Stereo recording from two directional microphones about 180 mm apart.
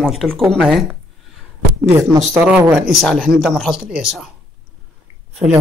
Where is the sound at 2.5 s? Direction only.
5° right (ahead or behind).